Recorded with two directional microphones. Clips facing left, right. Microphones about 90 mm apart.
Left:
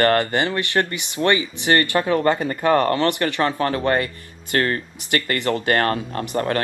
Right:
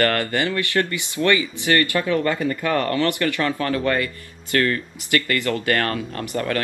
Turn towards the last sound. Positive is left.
turn(degrees=30)  # may be behind; listen again after turning